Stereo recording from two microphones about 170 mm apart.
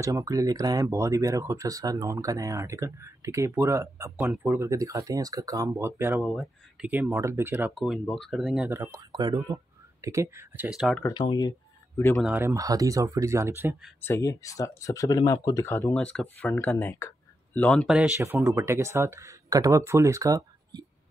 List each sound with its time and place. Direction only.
0.0 s speech: 20° right (ahead or behind)
6.2 s speech: centre (ahead or behind)
6.9 s speech: 15° right (ahead or behind)
7.7 s speech: centre (ahead or behind)
8.6 s speech: 15° right (ahead or behind)
11.1 s speech: 25° left (ahead or behind)
12.2 s speech: 10° right (ahead or behind)
14.0 s speech: 15° left (ahead or behind)
17.9 s speech: 10° right (ahead or behind)